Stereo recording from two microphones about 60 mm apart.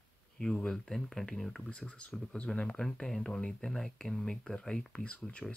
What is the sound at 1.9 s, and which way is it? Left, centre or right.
Speech, left.